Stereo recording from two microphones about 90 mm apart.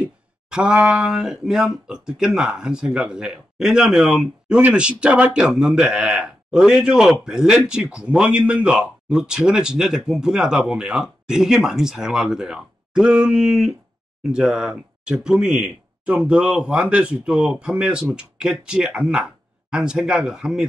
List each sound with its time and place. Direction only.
0.0 s speech: 10° right (ahead or behind)